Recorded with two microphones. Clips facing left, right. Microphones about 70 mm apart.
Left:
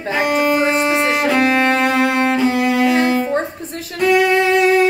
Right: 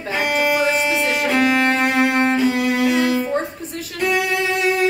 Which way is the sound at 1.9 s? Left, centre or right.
Left.